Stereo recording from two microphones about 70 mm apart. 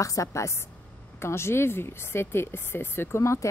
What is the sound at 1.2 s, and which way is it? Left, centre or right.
Speech, left.